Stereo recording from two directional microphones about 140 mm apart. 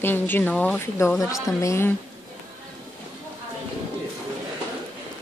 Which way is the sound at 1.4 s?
20° left (ahead or behind).